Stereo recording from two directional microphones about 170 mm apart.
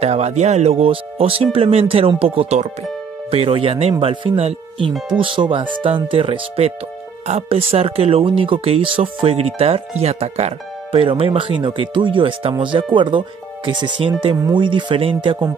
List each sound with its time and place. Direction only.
0.0 s speech: 40° right (ahead or behind)